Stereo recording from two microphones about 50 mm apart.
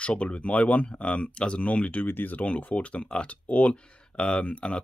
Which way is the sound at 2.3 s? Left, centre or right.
Left.